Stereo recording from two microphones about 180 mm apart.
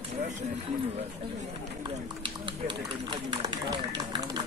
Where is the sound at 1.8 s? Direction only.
25° right (ahead or behind).